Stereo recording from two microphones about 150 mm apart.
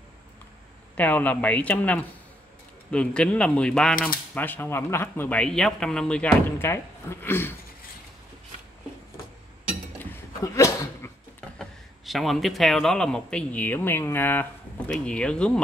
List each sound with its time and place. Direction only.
0.9 s speech: 10° left (ahead or behind)
10.4 s a sound: 20° left (ahead or behind)
12.1 s a man's voice: centre (ahead or behind)